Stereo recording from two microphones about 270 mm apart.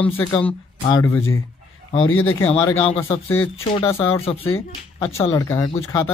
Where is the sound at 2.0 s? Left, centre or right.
Left.